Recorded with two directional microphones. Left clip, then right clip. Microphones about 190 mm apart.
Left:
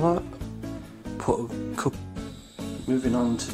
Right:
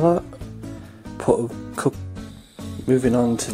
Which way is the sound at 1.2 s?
15° right (ahead or behind).